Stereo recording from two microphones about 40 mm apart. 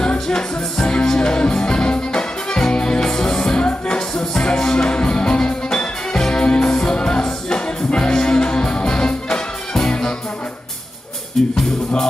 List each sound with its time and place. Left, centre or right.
0.1 s music: centre
11.4 s music: centre